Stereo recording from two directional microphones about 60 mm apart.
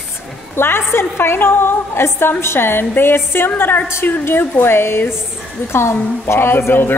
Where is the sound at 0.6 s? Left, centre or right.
Left.